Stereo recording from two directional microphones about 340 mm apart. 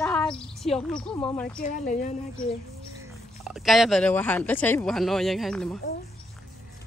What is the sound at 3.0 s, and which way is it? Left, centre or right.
Speech, centre.